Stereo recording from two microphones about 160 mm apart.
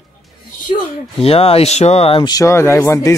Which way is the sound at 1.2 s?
40° left (ahead or behind).